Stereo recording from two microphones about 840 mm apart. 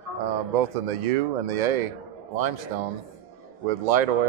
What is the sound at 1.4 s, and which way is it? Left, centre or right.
Speech, right.